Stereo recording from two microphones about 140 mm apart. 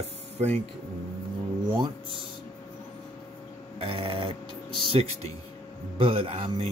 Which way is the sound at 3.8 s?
40° right (ahead or behind).